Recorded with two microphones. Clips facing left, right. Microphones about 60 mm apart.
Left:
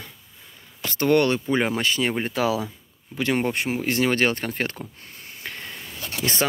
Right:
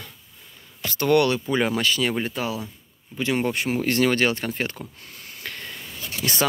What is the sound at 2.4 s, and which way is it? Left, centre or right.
Speech, left.